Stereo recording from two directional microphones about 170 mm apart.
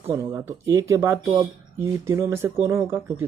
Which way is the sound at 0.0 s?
15° right (ahead or behind).